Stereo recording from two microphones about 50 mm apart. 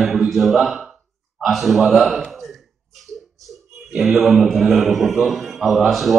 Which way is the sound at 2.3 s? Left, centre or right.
Centre.